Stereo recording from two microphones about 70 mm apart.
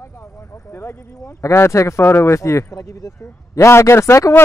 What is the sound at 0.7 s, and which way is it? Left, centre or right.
Speech, left.